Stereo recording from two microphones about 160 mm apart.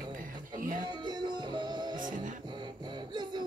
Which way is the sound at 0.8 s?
25° right (ahead or behind).